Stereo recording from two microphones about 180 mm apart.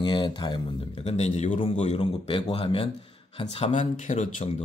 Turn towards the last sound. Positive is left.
turn(degrees=40)  # may be behind; listen again after turning